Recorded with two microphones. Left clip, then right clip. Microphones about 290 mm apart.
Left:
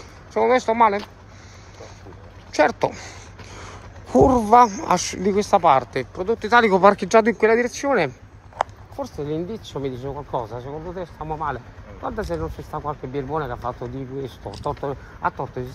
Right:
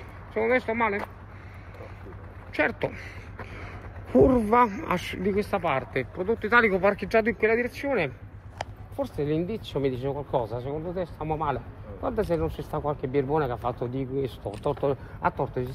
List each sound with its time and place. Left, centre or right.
0.3 s speech: left
2.5 s speech: left
9.1 s speech: centre